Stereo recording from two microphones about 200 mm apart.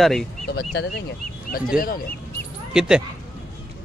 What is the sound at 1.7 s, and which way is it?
Speech, 45° left (ahead or behind).